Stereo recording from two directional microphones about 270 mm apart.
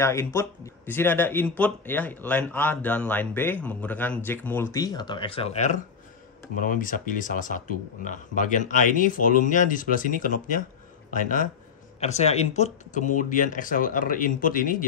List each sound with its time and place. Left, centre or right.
0.0 s speech: centre; by 14.9 s left